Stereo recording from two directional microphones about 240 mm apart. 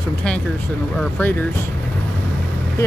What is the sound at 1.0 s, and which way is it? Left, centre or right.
Speech, centre.